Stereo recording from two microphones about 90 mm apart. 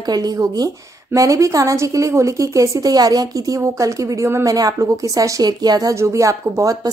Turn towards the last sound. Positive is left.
turn(degrees=-40)  # may be behind; listen again after turning